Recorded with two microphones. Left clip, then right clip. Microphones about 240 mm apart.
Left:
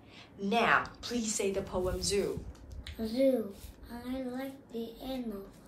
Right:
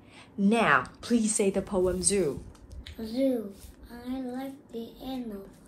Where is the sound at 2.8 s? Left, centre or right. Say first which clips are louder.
Even; centre.